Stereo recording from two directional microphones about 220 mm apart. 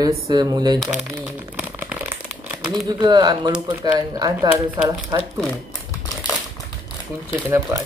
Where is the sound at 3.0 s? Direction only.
20° right (ahead or behind).